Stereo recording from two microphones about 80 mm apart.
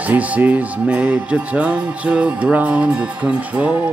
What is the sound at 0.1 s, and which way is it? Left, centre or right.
Music, centre.